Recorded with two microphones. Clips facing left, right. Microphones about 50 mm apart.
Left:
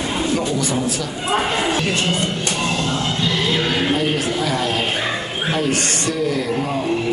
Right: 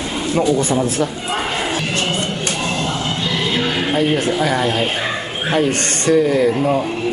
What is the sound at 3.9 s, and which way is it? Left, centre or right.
Speech, right.